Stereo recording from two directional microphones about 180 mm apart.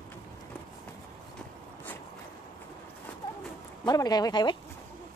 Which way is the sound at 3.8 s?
20° left (ahead or behind).